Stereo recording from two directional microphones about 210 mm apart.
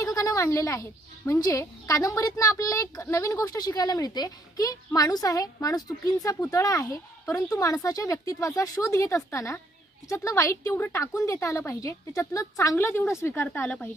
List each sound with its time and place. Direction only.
0.0 s speech: 15° left (ahead or behind)